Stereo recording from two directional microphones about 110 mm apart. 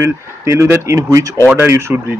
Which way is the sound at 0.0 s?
25° right (ahead or behind).